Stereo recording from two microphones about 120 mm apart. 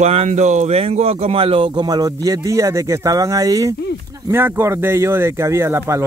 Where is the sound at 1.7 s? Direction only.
35° right (ahead or behind).